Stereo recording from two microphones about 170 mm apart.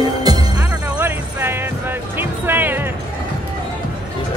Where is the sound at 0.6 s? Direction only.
10° right (ahead or behind).